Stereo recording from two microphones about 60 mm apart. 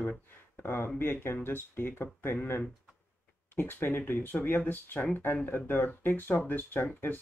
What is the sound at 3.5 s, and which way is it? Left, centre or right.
Speech, left.